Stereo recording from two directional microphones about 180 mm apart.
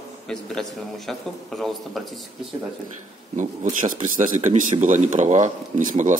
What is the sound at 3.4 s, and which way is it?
Speech, 45° right (ahead or behind).